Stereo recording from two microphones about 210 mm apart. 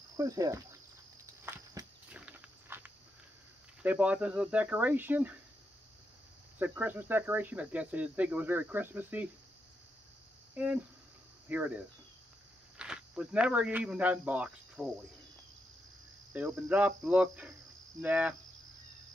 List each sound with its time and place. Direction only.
0.2 s speech: 15° right (ahead or behind)
1.2 s walk: 15° right (ahead or behind)
2.1 s insect: 5° right (ahead or behind)
3.8 s speech: 5° right (ahead or behind)
6.6 s speech: 10° right (ahead or behind)
10.5 s speech: 5° right (ahead or behind)
16.3 s speech: 10° right (ahead or behind)